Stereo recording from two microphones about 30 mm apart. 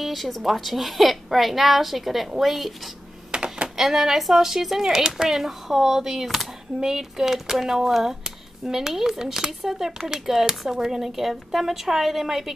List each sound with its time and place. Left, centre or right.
0.0 s a woman's voice: centre
3.3 s typing: right
3.6 s a woman's voice: centre